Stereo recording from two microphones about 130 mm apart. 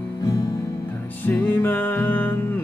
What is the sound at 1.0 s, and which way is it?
Speech, 15° left (ahead or behind).